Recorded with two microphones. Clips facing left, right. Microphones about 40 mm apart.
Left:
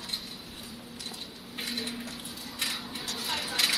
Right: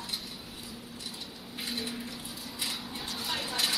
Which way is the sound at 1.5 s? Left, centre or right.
Left.